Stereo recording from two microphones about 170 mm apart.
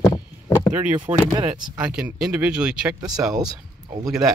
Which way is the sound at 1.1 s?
30° right (ahead or behind).